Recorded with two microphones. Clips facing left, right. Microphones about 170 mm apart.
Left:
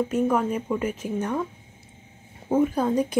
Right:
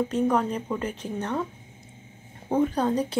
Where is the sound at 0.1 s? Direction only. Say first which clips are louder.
Left 1 dB; 5° left (ahead or behind).